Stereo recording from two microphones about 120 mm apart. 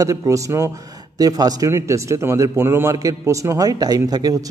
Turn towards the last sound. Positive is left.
turn(degrees=-30)  # may be behind; listen again after turning